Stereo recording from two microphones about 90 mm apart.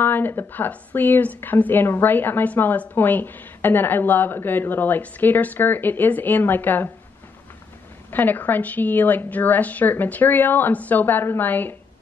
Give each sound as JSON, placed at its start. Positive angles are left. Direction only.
{"t": 0.0, "sound": "a woman's voice", "side_deg": 20}
{"t": 8.1, "sound": "a woman's voice", "side_deg": 20}